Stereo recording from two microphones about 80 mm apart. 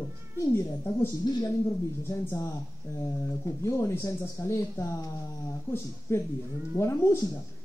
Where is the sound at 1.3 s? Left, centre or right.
Left.